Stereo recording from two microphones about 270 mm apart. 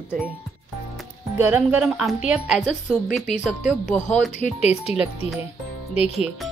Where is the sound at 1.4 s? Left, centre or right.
Centre.